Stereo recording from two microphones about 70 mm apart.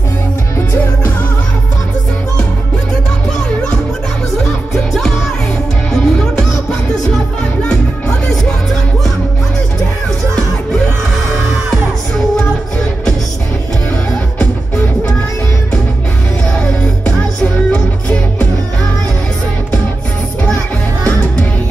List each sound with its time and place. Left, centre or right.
3.3 s music: centre
4.9 s music: centre
17.6 s music: left